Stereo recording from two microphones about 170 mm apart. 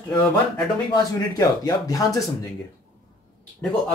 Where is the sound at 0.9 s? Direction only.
20° left (ahead or behind).